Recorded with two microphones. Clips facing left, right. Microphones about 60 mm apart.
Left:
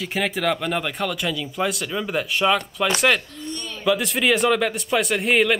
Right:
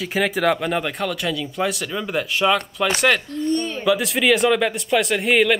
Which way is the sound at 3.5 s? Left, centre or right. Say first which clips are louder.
Right 11 dB; right.